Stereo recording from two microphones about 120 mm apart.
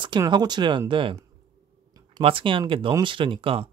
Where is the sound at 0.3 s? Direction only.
35° right (ahead or behind).